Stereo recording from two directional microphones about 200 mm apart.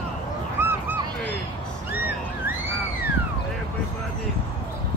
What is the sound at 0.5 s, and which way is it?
Honk, 10° right (ahead or behind).